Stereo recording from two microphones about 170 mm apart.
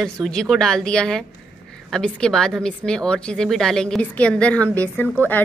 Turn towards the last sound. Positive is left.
turn(degrees=10)  # may be behind; listen again after turning